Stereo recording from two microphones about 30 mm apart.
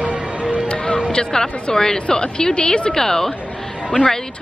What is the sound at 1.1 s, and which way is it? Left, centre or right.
Speech, left.